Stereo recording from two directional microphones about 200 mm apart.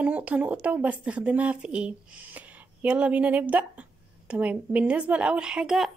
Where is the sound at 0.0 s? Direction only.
5° right (ahead or behind).